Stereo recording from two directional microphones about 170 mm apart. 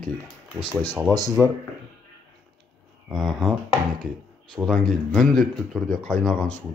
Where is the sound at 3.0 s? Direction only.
Centre (ahead or behind).